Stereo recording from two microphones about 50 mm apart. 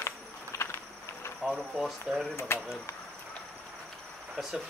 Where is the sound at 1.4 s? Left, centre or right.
Centre.